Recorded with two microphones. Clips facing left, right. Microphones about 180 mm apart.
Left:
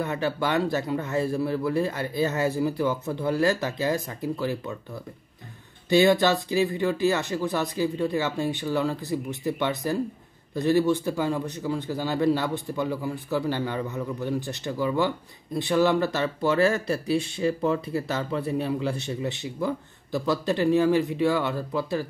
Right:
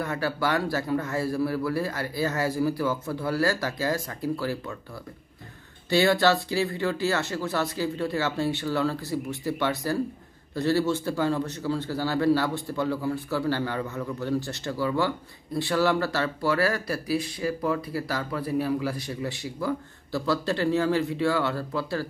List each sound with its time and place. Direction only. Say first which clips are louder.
0.0 s speech: left 1 dB; 20° left (ahead or behind)
5.9 s a man's voice: left 2 dB; 20° left (ahead or behind)